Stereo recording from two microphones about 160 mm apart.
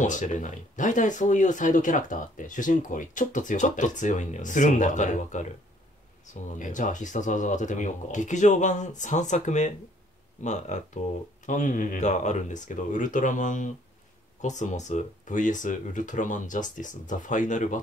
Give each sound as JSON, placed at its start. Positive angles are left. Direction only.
{"t": 0.0, "sound": "speech", "side_deg": 50}
{"t": 6.6, "sound": "speech", "side_deg": 50}